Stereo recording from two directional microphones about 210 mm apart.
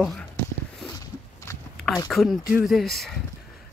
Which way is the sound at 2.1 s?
Centre (ahead or behind).